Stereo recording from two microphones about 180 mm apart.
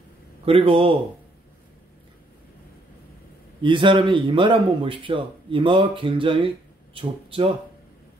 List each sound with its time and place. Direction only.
0.5 s speech: 30° right (ahead or behind)
3.6 s a man's voice: 25° right (ahead or behind)